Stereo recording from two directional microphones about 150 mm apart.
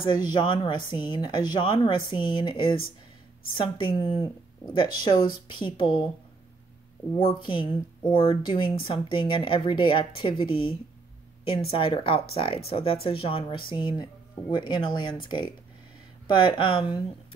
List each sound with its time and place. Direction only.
0.0 s speech: 30° left (ahead or behind)
7.2 s speech: 35° left (ahead or behind)